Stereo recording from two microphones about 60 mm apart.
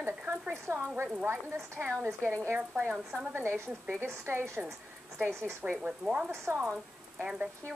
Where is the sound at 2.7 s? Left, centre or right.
Right.